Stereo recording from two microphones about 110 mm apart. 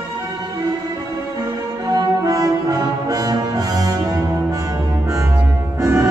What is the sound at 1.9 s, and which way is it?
Brass instrument, 35° right (ahead or behind).